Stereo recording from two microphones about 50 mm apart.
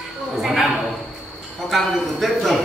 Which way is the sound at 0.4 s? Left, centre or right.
Centre.